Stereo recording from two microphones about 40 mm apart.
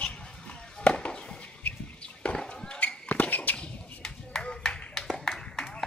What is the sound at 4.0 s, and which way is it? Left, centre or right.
Clapping, centre.